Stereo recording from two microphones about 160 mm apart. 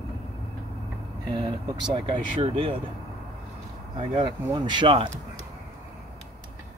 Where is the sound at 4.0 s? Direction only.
35° right (ahead or behind).